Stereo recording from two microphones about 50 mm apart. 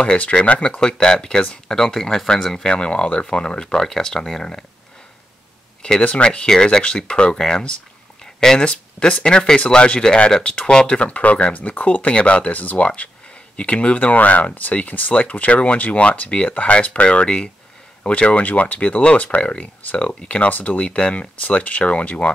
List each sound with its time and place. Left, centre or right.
0.0 s speech: centre
5.8 s a sound: centre
6.0 s speech: left